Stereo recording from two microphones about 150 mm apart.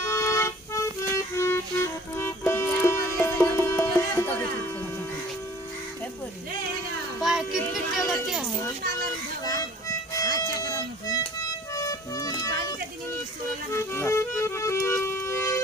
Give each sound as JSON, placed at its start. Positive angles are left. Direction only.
{"t": 0.0, "sound": "violin", "side_deg": 20}
{"t": 7.2, "sound": "music", "side_deg": -5}
{"t": 9.8, "sound": "music", "side_deg": 20}
{"t": 11.7, "sound": "music", "side_deg": 20}
{"t": 13.9, "sound": "music", "side_deg": 15}